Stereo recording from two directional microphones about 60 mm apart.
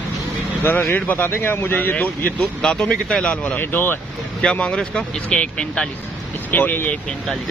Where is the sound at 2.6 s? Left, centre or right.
Centre.